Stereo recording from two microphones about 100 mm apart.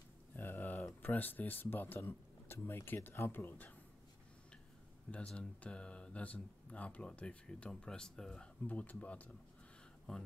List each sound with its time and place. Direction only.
0.4 s speech: 20° left (ahead or behind)
5.1 s speech: 10° left (ahead or behind)